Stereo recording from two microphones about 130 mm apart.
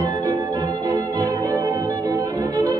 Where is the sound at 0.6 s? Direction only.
15° left (ahead or behind).